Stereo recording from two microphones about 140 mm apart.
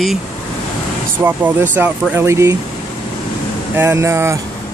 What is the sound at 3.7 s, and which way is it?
Speech, 20° right (ahead or behind).